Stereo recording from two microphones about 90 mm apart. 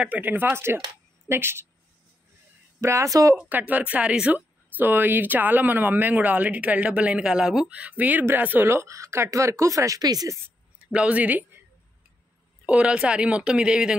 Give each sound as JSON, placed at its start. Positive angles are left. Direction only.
{"t": 0.0, "sound": "speech", "side_deg": -20}
{"t": 2.8, "sound": "speech", "side_deg": -35}
{"t": 3.3, "sound": "speech", "side_deg": -20}
{"t": 10.8, "sound": "speech", "side_deg": -10}
{"t": 12.6, "sound": "speech", "side_deg": -10}